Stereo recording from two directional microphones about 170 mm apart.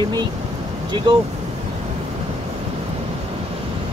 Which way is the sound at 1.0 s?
30° right (ahead or behind).